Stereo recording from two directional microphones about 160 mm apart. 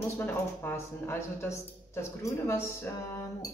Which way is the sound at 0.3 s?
15° left (ahead or behind).